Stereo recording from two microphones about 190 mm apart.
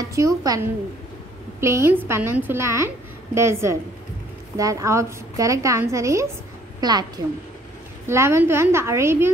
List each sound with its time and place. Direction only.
0.1 s a woman's voice: 15° right (ahead or behind)
8.1 s a woman's voice: 15° right (ahead or behind)